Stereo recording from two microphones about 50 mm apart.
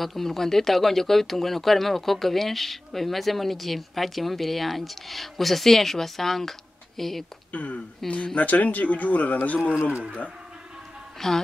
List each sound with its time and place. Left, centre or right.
0.0 s speech: centre
7.5 s speech: left
8.0 s speech: centre
8.4 s speech: left
9.9 s speech: centre
11.1 s speech: centre